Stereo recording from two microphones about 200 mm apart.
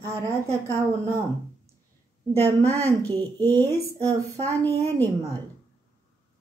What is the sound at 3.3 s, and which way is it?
Speech, 10° left (ahead or behind).